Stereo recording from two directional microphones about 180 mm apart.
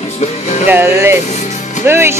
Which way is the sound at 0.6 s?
10° right (ahead or behind).